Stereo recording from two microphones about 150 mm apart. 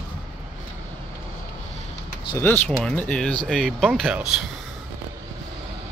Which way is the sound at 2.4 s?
15° left (ahead or behind).